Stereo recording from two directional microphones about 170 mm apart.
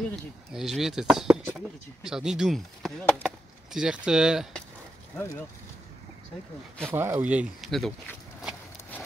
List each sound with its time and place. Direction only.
0.1 s speech: centre (ahead or behind)
5.1 s speech: 15° left (ahead or behind)
6.9 s speech: 15° right (ahead or behind)